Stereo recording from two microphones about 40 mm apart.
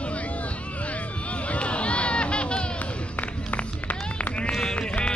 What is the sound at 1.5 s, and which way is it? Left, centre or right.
Run, left.